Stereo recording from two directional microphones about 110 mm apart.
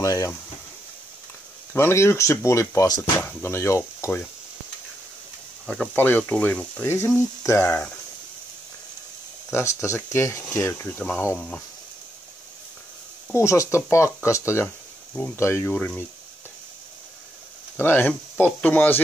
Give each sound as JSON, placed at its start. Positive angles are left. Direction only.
{"t": 0.0, "sound": "speech", "side_deg": 30}
{"t": 1.7, "sound": "speech", "side_deg": 25}
{"t": 5.9, "sound": "speech", "side_deg": 15}
{"t": 7.2, "sound": "speech", "side_deg": 20}
{"t": 9.5, "sound": "speech", "side_deg": 25}
{"t": 13.3, "sound": "speech", "side_deg": 25}
{"t": 15.7, "sound": "speech", "side_deg": 5}
{"t": 17.7, "sound": "speech", "side_deg": 20}